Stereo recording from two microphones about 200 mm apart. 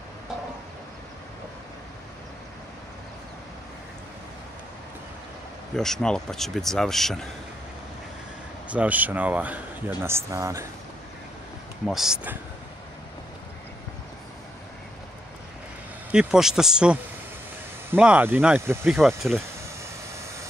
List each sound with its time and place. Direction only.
5.8 s speech: 5° left (ahead or behind)
8.6 s speech: 5° right (ahead or behind)
11.8 s speech: centre (ahead or behind)
16.1 s speech: 5° right (ahead or behind)